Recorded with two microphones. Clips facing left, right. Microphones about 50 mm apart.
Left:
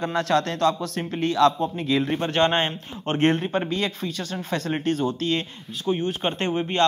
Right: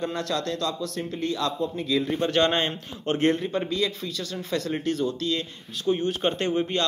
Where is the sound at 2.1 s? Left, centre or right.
Left.